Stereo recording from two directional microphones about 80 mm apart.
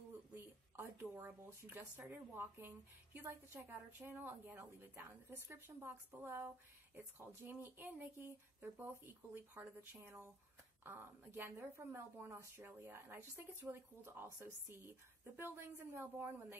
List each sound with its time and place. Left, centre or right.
0.7 s a woman's voice: right
10.9 s a woman's voice: right